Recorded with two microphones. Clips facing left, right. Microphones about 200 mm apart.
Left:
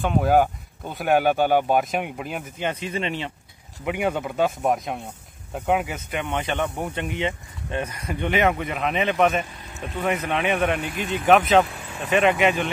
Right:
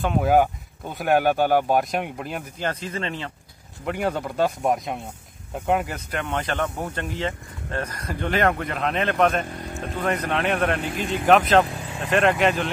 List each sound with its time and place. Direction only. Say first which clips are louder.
0.0 s speech: even; centre (ahead or behind)
2.9 s speech: left 2 dB; 25° left (ahead or behind)
3.8 s speech: left 1 dB; 5° left (ahead or behind)
9.5 s speech: right 8 dB; 55° right (ahead or behind)
9.8 s speech: even; 5° left (ahead or behind)